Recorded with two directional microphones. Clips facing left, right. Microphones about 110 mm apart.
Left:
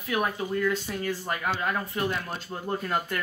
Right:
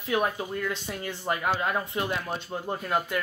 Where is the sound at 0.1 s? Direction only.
20° right (ahead or behind).